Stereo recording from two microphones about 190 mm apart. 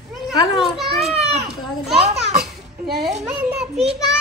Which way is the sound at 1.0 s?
30° right (ahead or behind).